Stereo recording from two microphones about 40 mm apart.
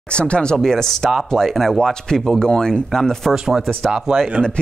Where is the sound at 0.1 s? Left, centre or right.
Left.